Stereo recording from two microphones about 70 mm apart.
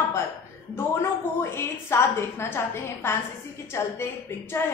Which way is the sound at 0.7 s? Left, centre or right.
Left.